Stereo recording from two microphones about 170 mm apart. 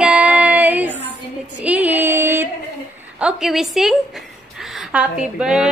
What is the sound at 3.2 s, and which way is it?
Speech, centre (ahead or behind).